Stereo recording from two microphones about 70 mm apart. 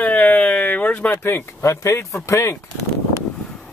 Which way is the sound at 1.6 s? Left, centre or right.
Left.